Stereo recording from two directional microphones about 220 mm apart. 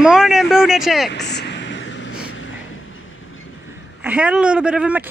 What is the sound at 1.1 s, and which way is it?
Vehicle, 50° left (ahead or behind).